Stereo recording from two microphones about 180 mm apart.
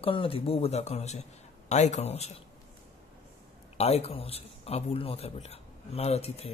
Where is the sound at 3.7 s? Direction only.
35° left (ahead or behind).